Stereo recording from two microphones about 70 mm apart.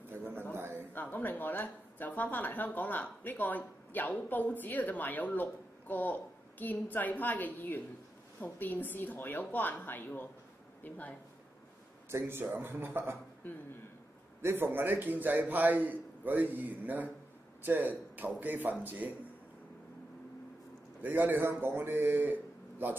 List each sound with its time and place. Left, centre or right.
0.6 s a sound: right
0.9 s speech: left
12.1 s speech: right
13.4 s speech: left
14.4 s a man's voice: right
21.0 s a man's voice: right